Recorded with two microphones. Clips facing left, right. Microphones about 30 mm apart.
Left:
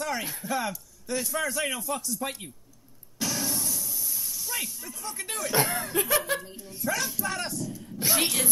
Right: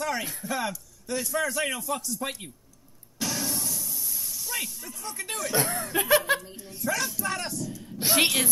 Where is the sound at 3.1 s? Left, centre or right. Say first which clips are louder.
Even; centre.